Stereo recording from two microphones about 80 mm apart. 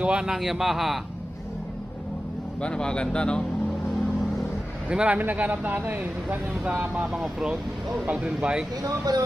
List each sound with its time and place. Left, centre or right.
0.0 s speech: centre
2.6 s speech: centre
4.8 s speech: centre
6.6 s speech: centre
8.8 s speech: right